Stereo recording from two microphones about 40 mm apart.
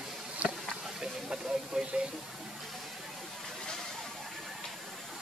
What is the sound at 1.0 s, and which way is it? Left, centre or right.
Speech, centre.